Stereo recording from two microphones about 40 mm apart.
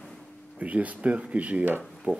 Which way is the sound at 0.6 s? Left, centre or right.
Right.